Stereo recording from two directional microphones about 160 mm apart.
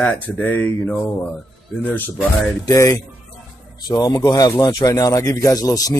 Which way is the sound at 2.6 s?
20° left (ahead or behind).